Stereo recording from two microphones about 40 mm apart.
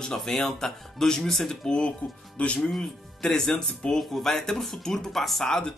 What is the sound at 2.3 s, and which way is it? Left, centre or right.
Speech, left.